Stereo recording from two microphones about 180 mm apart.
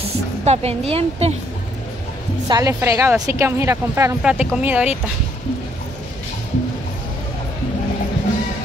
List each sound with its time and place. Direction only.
0.5 s a woman's voice: 35° right (ahead or behind)
2.4 s a woman's voice: 20° right (ahead or behind)